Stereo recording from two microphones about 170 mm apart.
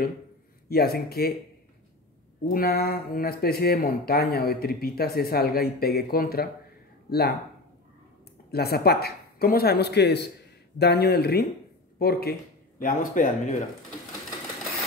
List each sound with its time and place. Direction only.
0.7 s speech: 65° left (ahead or behind)
2.5 s speech: 65° left (ahead or behind)
8.5 s speech: 65° left (ahead or behind); by 13.7 s 50° left (ahead or behind)